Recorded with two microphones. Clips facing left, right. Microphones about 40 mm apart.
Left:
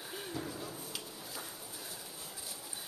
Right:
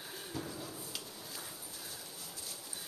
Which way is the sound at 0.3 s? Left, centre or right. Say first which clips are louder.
Even; centre.